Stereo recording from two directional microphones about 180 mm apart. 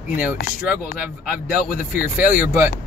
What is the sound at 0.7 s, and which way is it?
Speech, 10° right (ahead or behind).